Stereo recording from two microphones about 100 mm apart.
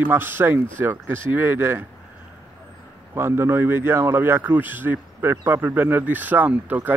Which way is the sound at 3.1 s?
25° right (ahead or behind).